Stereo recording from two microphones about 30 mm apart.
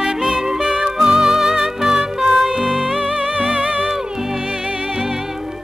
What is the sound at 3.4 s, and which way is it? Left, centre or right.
Music, right.